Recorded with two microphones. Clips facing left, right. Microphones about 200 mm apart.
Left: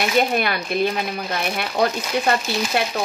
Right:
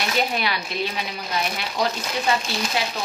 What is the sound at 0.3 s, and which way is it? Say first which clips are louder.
Speech: left 5 dB; 50° left (ahead or behind).